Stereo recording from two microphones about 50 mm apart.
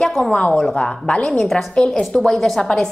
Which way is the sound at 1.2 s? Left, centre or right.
Centre.